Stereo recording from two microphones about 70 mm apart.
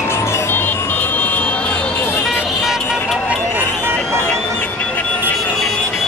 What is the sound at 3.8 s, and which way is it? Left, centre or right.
Music, right.